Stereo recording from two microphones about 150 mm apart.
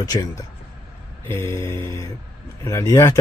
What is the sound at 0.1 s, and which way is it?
Speech, 30° left (ahead or behind).